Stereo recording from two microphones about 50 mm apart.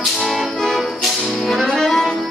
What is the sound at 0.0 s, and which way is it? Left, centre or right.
Music, centre.